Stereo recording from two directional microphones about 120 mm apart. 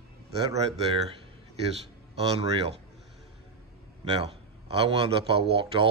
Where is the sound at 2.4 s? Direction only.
50° right (ahead or behind).